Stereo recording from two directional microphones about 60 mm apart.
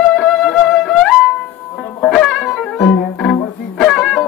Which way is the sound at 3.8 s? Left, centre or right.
Centre.